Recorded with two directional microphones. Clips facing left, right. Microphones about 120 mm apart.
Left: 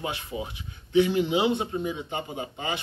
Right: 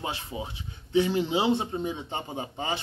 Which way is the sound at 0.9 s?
35° right (ahead or behind).